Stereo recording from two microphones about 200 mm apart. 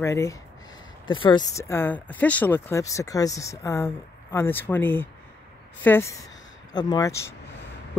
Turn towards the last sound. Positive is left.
turn(degrees=15)  # may be behind; listen again after turning